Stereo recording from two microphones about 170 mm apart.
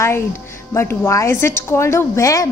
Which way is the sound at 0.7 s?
15° left (ahead or behind).